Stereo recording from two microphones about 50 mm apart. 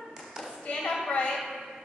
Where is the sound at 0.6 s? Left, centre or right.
Centre.